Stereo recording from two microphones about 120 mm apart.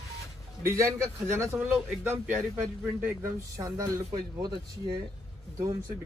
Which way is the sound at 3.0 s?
25° right (ahead or behind).